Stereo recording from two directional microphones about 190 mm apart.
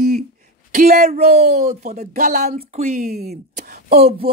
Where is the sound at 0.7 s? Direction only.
40° right (ahead or behind).